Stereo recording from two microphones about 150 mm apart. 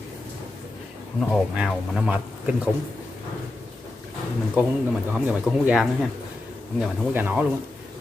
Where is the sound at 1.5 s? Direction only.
5° right (ahead or behind).